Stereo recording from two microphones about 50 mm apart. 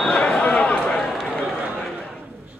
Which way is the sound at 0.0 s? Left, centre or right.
Centre.